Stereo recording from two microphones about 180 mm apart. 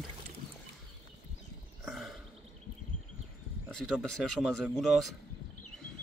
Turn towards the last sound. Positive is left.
turn(degrees=0)  # may be behind; listen again after turning